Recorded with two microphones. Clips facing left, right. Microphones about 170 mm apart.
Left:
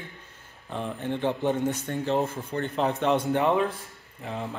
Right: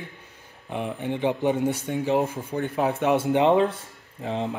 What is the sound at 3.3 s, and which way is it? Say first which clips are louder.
Speech: right 4 dB; 20° right (ahead or behind).